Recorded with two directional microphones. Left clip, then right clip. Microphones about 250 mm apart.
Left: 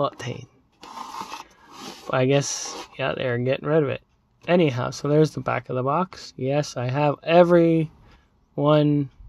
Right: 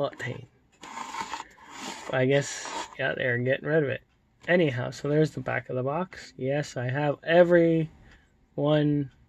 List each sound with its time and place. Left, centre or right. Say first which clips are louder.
0.0 s speech: left 5 dB; centre
2.0 s speech: left 4 dB; centre